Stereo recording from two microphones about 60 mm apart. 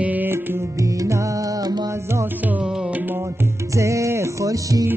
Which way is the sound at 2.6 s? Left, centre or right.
Centre.